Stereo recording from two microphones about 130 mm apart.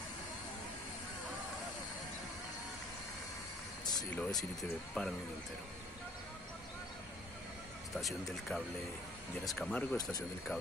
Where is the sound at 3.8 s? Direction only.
30° left (ahead or behind).